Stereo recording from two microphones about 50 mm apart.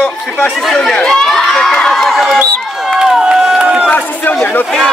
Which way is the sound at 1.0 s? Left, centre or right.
Centre.